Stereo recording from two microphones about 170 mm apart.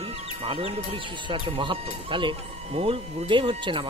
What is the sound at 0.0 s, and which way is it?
A man's voice, 35° right (ahead or behind).